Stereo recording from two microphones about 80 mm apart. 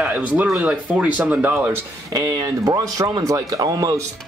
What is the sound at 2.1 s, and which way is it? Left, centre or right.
Speech, right.